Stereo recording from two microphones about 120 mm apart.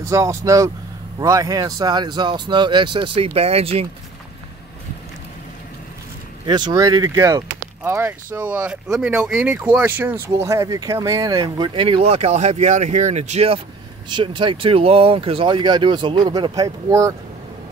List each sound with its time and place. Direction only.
0.0 s speech: 25° right (ahead or behind); by 3.8 s 55° right (ahead or behind)
6.4 s speech: 40° right (ahead or behind); by 13.5 s 70° right (ahead or behind)
14.0 s speech: 40° right (ahead or behind)